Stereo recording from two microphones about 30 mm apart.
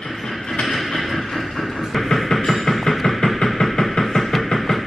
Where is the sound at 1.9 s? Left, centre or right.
Centre.